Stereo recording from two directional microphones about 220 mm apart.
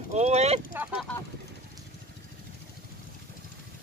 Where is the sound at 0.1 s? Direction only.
30° right (ahead or behind).